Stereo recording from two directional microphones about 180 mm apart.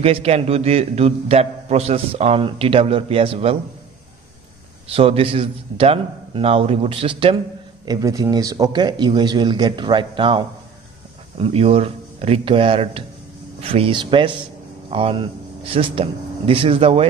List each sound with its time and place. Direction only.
0.0 s a man's voice: 35° right (ahead or behind)
4.8 s a man's voice: 30° right (ahead or behind)